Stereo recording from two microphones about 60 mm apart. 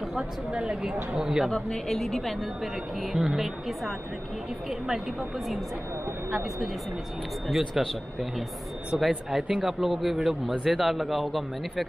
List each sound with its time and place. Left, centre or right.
0.1 s speech: centre
1.5 s speech: centre
7.4 s speech: centre
9.3 s speech: centre